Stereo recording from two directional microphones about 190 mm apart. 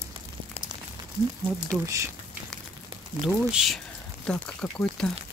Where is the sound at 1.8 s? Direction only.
15° right (ahead or behind).